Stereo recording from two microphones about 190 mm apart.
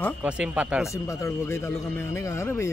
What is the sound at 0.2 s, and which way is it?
Speech, 5° right (ahead or behind).